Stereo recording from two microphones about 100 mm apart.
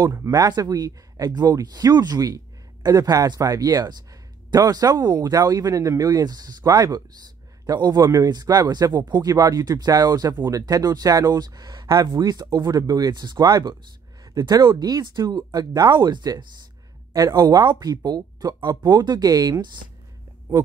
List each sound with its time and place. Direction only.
0.0 s speech: 35° right (ahead or behind)
17.1 s speech: 35° right (ahead or behind)